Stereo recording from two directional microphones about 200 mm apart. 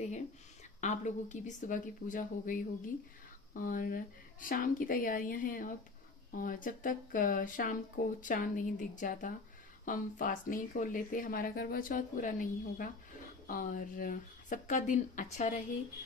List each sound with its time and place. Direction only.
0.7 s a woman's voice: 35° left (ahead or behind)